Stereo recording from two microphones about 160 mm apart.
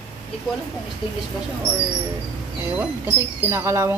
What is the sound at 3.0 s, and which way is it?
Speech, 15° right (ahead or behind).